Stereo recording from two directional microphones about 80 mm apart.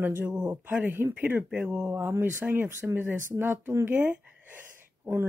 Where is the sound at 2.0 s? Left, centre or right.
Right.